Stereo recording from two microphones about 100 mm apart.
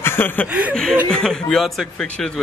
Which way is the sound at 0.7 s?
5° left (ahead or behind).